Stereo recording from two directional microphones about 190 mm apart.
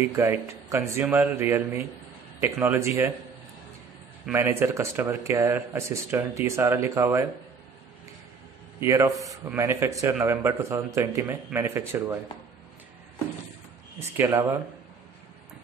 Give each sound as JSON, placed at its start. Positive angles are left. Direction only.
{"t": 0.0, "sound": "speech", "side_deg": -15}
{"t": 4.3, "sound": "speech", "side_deg": -10}
{"t": 8.7, "sound": "a man's voice", "side_deg": -15}
{"t": 13.9, "sound": "speech", "side_deg": -15}